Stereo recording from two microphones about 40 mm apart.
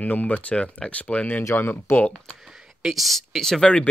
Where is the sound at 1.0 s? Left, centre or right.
Left.